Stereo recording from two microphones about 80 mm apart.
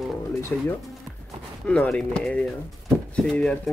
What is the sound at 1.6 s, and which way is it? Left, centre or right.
Speech, centre.